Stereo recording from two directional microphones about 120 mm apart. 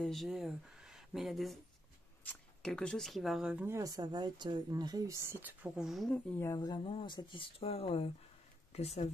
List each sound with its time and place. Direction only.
0.0 s speech: centre (ahead or behind)
3.6 s speech: 25° right (ahead or behind); by 6.1 s centre (ahead or behind)
6.4 s speech: 30° left (ahead or behind)
6.9 s speech: 50° left (ahead or behind)